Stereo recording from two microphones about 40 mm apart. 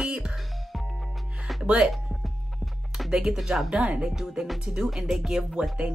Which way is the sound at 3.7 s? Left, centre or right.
Right.